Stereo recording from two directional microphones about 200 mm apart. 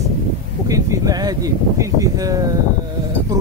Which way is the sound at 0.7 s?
15° right (ahead or behind).